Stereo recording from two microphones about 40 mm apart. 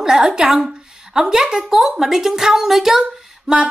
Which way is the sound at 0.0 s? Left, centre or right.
Centre.